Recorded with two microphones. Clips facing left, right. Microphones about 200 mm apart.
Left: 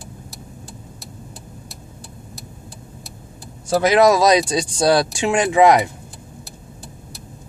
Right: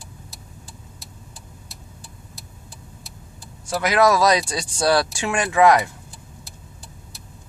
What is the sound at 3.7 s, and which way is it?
Speech, 25° left (ahead or behind).